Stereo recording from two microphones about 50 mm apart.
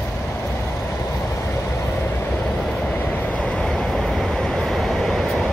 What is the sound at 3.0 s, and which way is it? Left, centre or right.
Vehicle, left.